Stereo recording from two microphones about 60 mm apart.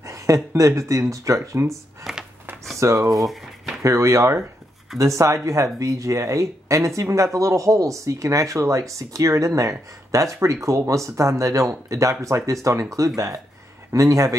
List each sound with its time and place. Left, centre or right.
0.0 s a sound: right
0.6 s speech: right
2.1 s a sound: centre
2.8 s a man's voice: right
3.1 s drawer open or close: centre
3.8 s a man's voice: right